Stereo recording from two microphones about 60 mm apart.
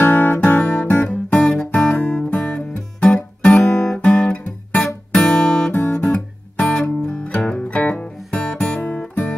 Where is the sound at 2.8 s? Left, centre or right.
Centre.